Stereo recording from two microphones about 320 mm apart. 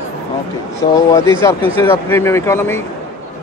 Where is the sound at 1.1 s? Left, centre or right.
Centre.